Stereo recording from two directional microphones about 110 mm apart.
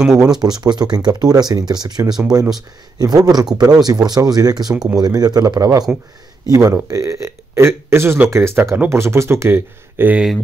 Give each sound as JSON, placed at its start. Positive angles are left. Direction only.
{"t": 0.0, "sound": "speech", "side_deg": -5}
{"t": 0.4, "sound": "speech", "side_deg": -40}
{"t": 2.0, "sound": "speech", "side_deg": -5}
{"t": 3.0, "sound": "speech", "side_deg": -35}